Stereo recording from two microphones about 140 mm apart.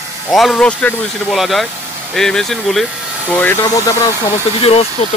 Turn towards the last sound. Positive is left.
turn(degrees=45)  # may be behind; listen again after turning